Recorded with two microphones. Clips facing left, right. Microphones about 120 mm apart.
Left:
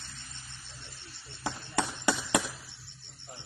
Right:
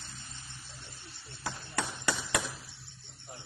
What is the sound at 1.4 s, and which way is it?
Clip-clop, 20° left (ahead or behind).